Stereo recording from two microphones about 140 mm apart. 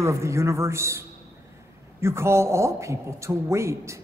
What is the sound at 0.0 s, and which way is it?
Speech, 20° right (ahead or behind).